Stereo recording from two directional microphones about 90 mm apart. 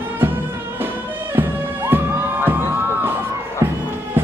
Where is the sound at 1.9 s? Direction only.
25° right (ahead or behind).